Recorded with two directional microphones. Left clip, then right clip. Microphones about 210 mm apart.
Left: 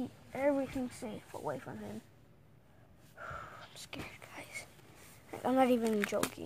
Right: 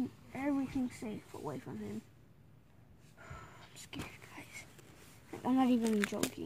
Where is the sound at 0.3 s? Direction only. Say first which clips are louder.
Left 6 dB; centre (ahead or behind).